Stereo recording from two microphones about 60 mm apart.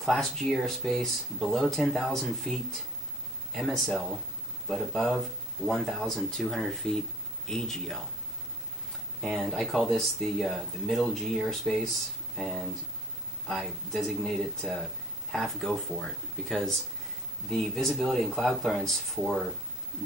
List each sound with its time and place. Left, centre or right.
0.0 s speech: centre
3.5 s speech: centre
9.2 s speech: centre